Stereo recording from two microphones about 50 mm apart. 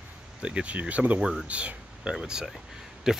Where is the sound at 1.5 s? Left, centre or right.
Right.